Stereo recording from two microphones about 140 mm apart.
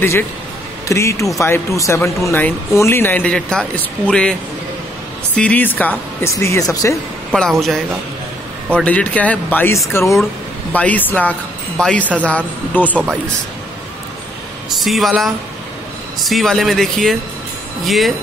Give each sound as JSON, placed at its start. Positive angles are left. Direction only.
{"t": 0.8, "sound": "speech", "side_deg": 20}
{"t": 7.3, "sound": "speech", "side_deg": 0}
{"t": 12.9, "sound": "speech", "side_deg": -10}
{"t": 14.8, "sound": "speech", "side_deg": 0}